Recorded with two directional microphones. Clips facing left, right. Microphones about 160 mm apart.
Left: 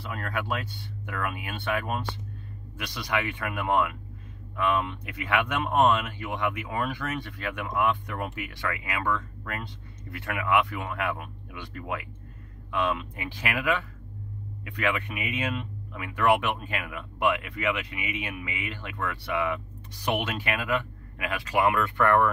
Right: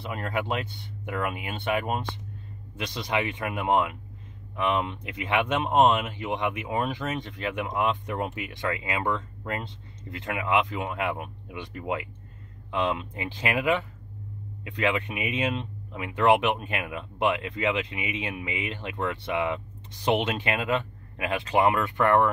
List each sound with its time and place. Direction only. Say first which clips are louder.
0.0 s speech: right 3 dB; 20° right (ahead or behind)